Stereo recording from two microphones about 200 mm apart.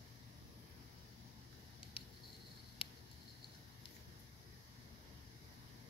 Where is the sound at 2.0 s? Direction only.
25° left (ahead or behind).